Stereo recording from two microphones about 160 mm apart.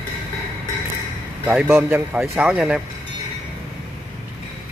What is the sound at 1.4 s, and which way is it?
A man's voice, 10° right (ahead or behind).